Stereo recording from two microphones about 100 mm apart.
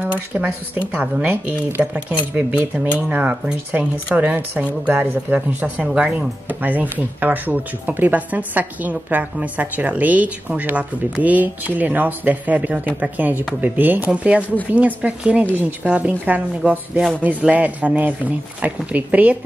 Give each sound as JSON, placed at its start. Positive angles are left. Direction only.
{"t": 0.0, "sound": "speech", "side_deg": -15}